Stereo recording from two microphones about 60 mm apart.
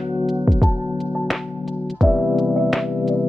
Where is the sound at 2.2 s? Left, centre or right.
Centre.